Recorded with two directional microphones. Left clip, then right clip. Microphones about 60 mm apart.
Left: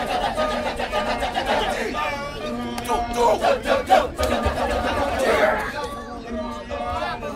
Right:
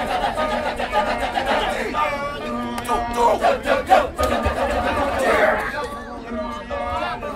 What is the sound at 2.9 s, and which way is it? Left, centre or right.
Music, right.